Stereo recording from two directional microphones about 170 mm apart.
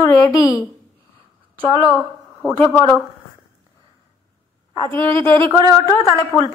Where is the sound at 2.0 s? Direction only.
5° left (ahead or behind).